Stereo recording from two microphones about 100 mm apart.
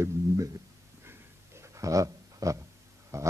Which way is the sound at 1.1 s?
30° right (ahead or behind).